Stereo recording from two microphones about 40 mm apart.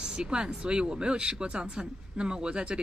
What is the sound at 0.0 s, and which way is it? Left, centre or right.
Speech, right.